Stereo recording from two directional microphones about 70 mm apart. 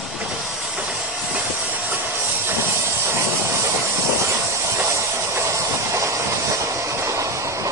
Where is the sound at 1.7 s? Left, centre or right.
Right.